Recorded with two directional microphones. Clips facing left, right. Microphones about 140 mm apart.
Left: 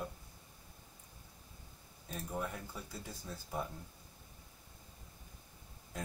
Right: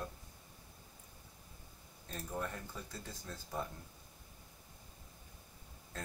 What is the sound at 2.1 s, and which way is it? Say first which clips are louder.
Speech: left 1 dB; 10° left (ahead or behind).